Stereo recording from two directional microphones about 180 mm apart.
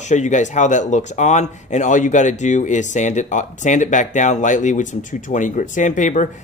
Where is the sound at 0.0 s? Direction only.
40° left (ahead or behind).